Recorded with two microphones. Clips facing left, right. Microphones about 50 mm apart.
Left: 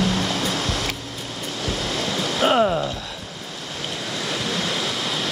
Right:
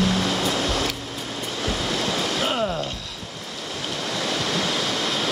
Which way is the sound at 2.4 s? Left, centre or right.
Left.